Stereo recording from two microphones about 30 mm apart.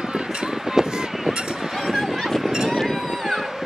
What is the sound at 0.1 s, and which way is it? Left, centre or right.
Run, right.